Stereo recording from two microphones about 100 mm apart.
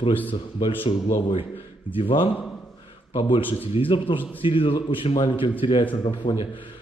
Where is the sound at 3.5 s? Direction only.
70° left (ahead or behind).